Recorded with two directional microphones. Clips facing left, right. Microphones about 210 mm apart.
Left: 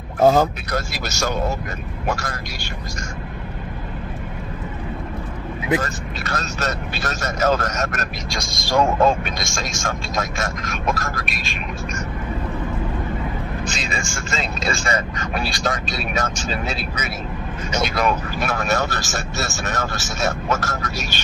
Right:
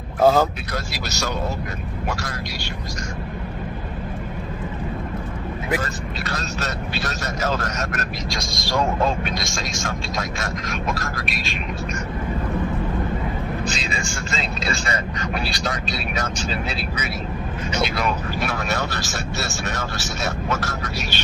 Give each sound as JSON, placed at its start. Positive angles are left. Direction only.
{"t": 0.2, "sound": "speech", "side_deg": 15}
{"t": 0.7, "sound": "speech", "side_deg": 50}
{"t": 6.2, "sound": "speech", "side_deg": 50}
{"t": 13.7, "sound": "speech", "side_deg": 45}